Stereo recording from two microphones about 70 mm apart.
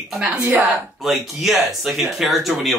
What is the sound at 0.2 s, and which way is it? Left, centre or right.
Speech, right.